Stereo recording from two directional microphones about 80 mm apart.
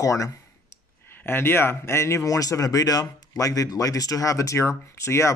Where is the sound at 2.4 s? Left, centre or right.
Left.